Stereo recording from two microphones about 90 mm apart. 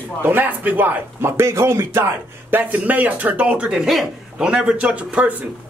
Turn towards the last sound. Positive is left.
turn(degrees=-15)  # may be behind; listen again after turning